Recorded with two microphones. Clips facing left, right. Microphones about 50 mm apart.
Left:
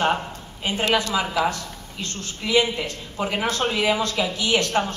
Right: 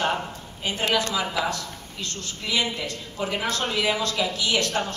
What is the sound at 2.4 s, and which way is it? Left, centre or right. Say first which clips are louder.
Speech: left 7 dB; centre.